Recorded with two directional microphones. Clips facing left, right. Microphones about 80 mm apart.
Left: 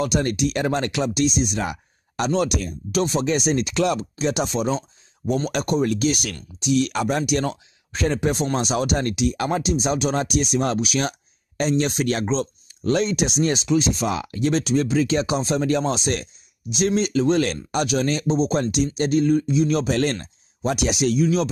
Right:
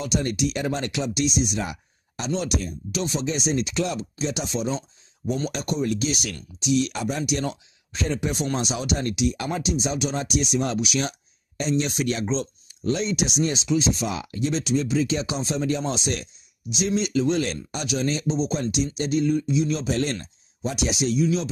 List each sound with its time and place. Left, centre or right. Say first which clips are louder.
0.0 s speech: left 3 dB; left
11.7 s speech: left 2 dB; left